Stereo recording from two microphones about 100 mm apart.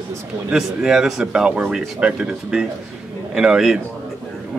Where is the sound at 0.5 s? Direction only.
5° right (ahead or behind).